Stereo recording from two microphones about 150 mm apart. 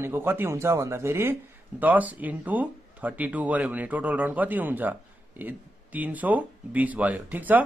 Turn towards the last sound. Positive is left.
turn(degrees=-10)  # may be behind; listen again after turning